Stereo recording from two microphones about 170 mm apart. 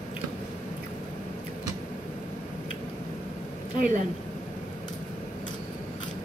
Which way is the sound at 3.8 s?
50° right (ahead or behind).